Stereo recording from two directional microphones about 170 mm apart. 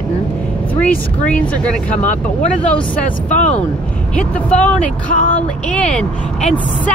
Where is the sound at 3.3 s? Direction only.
45° left (ahead or behind).